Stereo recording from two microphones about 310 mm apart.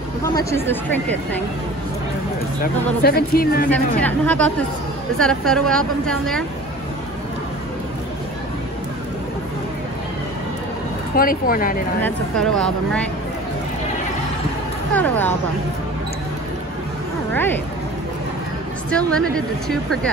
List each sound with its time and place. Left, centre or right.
0.2 s a woman's voice: centre
2.6 s speech: left
3.7 s a woman's voice: centre
11.1 s speech: left
12.0 s a woman's voice: centre
15.0 s speech: centre
18.9 s a woman's voice: centre